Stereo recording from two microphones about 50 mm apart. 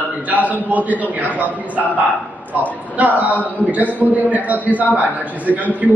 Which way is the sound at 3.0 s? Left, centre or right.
Right.